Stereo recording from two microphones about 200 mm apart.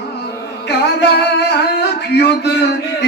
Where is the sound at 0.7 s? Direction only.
55° left (ahead or behind).